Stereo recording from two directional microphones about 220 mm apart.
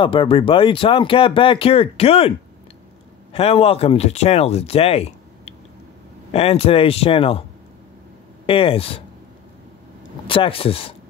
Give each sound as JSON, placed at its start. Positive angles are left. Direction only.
{"t": 0.0, "sound": "speech", "side_deg": 25}
{"t": 3.3, "sound": "speech", "side_deg": 25}
{"t": 8.5, "sound": "speech", "side_deg": 25}
{"t": 10.2, "sound": "speech", "side_deg": 25}